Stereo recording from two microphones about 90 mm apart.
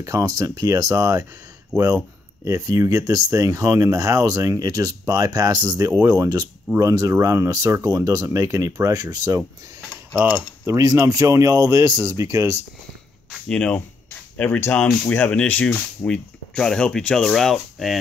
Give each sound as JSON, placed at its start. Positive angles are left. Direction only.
{"t": 0.0, "sound": "speech", "side_deg": -40}
{"t": 2.4, "sound": "speech", "side_deg": -35}
{"t": 10.1, "sound": "speech", "side_deg": -25}
{"t": 11.1, "sound": "speech", "side_deg": -40}
{"t": 13.5, "sound": "speech", "side_deg": 10}